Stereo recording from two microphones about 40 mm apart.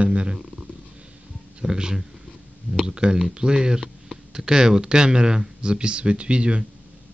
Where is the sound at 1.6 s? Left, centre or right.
Centre.